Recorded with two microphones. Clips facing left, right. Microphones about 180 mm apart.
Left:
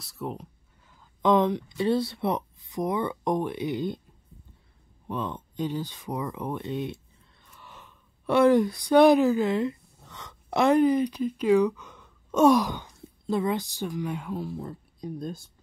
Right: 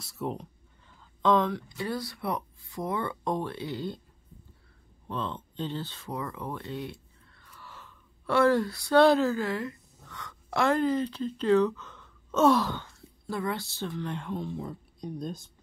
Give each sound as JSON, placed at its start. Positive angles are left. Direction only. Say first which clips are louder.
{"t": 0.0, "sound": "a sound", "louder": "right 1 dB", "side_deg": 0}
{"t": 1.2, "sound": "speech", "louder": "left 3 dB", "side_deg": 20}
{"t": 5.0, "sound": "speech", "louder": "left 2 dB", "side_deg": 15}